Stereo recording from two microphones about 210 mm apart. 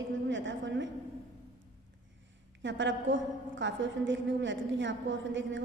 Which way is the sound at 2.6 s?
60° right (ahead or behind).